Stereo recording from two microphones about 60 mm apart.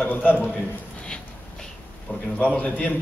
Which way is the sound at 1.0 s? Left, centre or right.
Centre.